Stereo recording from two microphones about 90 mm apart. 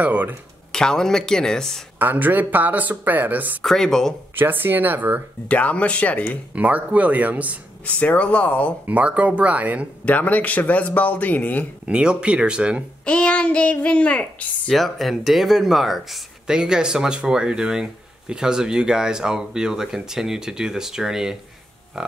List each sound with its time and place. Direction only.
0.0 s speech: 20° right (ahead or behind)
0.7 s a man's voice: 5° left (ahead or behind)
2.0 s speech: 20° right (ahead or behind)
3.6 s speech: 5° left (ahead or behind)
4.4 s speech: 20° right (ahead or behind)
5.5 s a man's voice: 15° left (ahead or behind)
6.5 s speech: 15° right (ahead or behind)
7.8 s a man's voice: 15° left (ahead or behind)
8.8 s speech: 15° right (ahead or behind)
10.0 s a man's voice: 20° left (ahead or behind)
11.9 s speech: 10° right (ahead or behind)
13.0 s a man's voice: 15° left (ahead or behind)
14.7 s speech: centre (ahead or behind)